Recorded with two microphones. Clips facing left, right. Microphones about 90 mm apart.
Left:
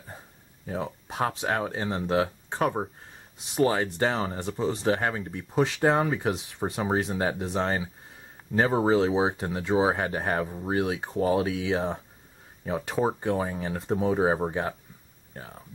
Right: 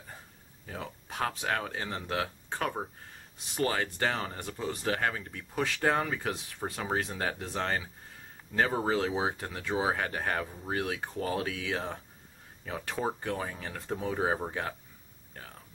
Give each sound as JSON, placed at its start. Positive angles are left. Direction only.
{"t": 0.7, "sound": "speech", "side_deg": 25}